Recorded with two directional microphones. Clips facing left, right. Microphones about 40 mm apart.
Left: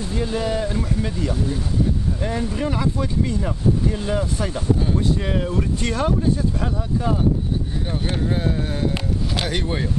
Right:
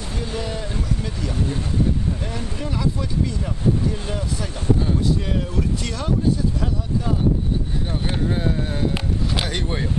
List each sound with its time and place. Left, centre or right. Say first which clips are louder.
0.3 s speech: left 6 dB; centre
2.5 s speech: left 3 dB; left
4.2 s speech: left 4 dB; left
8.1 s speech: even; centre